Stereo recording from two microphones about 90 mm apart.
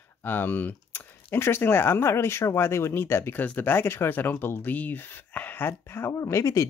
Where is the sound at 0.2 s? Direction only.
25° left (ahead or behind).